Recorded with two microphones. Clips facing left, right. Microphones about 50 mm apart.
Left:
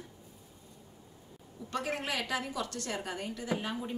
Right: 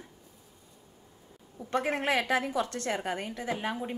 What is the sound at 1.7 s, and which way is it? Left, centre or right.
Speech, right.